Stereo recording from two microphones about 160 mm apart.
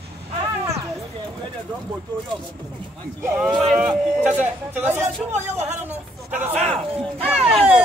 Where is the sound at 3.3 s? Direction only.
5° right (ahead or behind).